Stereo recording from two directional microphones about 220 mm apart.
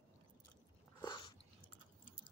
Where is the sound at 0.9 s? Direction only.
20° left (ahead or behind).